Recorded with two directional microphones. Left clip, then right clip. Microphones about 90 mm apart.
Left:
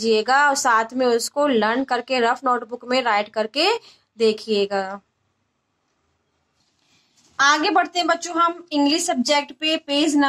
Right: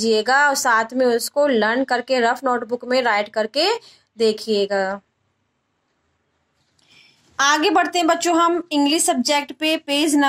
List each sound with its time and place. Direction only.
0.0 s speech: 10° right (ahead or behind)
7.3 s a woman's voice: 35° right (ahead or behind)